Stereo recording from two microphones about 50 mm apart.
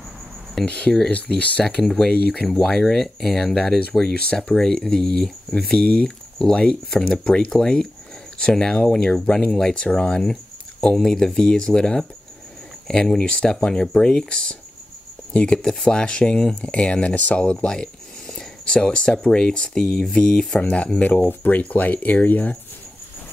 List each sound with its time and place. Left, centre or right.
0.7 s speech: left
1.8 s speech: centre
18.3 s a sound: centre
19.2 s speech: centre
20.6 s speech: left
21.3 s speech: left